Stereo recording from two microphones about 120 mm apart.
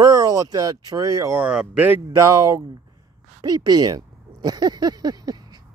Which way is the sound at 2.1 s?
25° right (ahead or behind).